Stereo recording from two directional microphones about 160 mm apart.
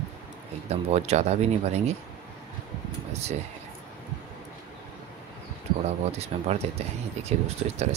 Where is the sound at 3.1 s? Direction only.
40° right (ahead or behind).